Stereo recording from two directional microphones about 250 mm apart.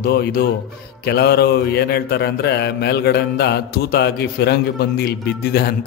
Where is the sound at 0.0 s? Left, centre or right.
Left.